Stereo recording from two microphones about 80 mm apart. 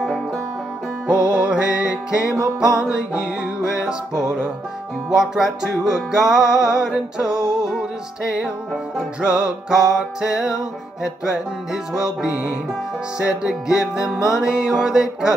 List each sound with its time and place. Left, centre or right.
1.1 s music: centre
2.4 s music: right
2.8 s music: centre
5.1 s music: centre
8.9 s music: centre